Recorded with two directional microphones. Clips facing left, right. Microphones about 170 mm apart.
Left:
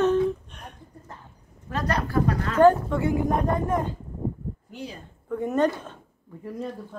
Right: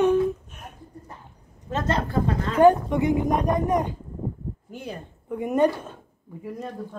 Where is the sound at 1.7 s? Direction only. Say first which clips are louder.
Right 2 dB; 25° right (ahead or behind).